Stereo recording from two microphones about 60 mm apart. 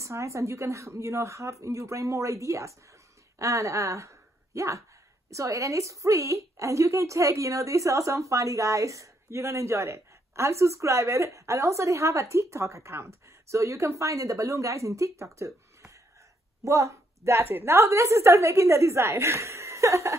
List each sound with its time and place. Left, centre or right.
0.0 s a woman's voice: right